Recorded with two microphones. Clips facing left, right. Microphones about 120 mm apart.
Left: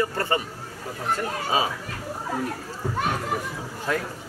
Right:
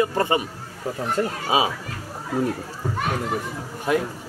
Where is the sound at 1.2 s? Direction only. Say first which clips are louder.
Right 6 dB; 25° right (ahead or behind).